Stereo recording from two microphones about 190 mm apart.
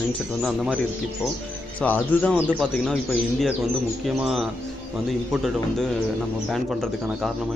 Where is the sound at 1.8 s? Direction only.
5° left (ahead or behind).